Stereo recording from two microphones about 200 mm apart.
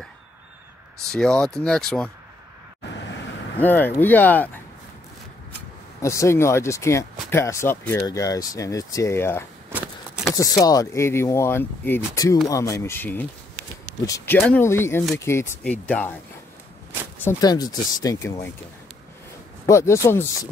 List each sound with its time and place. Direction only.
1.1 s speech: 5° left (ahead or behind)
3.5 s speech: 10° left (ahead or behind)
5.9 s speech: 15° left (ahead or behind)
9.7 s a sound: 5° right (ahead or behind)
10.6 s speech: 15° left (ahead or behind)
17.2 s speech: 15° left (ahead or behind)
19.6 s speech: 15° left (ahead or behind)